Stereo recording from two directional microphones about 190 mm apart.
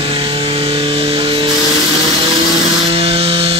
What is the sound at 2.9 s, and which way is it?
Wood, 30° right (ahead or behind).